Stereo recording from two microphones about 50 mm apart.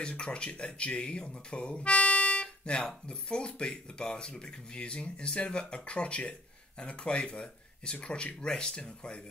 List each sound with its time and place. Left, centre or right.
0.0 s speech: left